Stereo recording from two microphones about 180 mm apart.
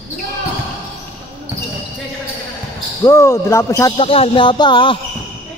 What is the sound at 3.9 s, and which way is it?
Speech, 30° left (ahead or behind).